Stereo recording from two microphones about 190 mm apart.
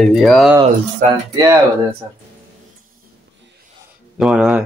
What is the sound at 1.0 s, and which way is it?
Speech, 40° right (ahead or behind).